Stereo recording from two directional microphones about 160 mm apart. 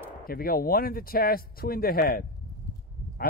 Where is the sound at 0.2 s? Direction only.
65° left (ahead or behind).